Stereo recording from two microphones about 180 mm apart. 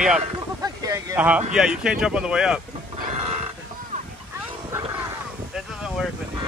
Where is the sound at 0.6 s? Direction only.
15° right (ahead or behind).